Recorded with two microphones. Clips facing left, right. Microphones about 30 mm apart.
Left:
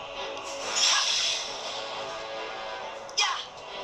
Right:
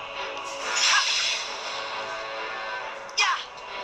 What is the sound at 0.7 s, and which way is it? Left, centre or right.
Music, centre.